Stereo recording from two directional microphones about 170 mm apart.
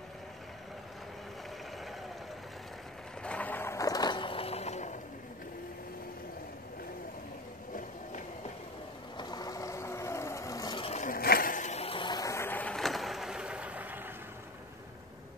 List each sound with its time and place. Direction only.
3.2 s vehicle: 5° left (ahead or behind); by 4.9 s 40° left (ahead or behind)
9.1 s vehicle: 25° left (ahead or behind)
10.9 s a sound: 50° left (ahead or behind); by 14.0 s 10° right (ahead or behind)